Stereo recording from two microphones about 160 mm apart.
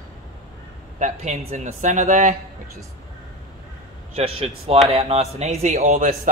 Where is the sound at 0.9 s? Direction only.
50° right (ahead or behind).